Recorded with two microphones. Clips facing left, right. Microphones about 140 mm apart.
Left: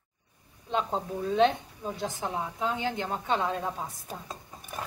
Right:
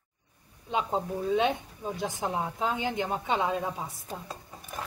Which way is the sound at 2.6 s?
15° right (ahead or behind).